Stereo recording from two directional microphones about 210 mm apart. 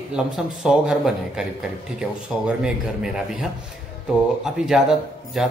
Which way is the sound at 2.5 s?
5° right (ahead or behind).